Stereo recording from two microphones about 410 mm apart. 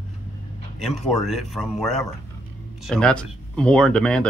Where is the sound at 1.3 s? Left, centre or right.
Centre.